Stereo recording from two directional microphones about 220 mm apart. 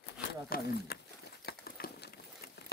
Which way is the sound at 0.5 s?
45° left (ahead or behind).